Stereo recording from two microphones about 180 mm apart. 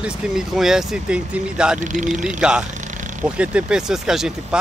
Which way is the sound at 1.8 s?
45° right (ahead or behind).